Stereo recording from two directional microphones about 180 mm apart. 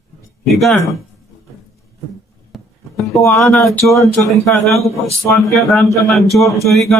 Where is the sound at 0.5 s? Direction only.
Centre (ahead or behind).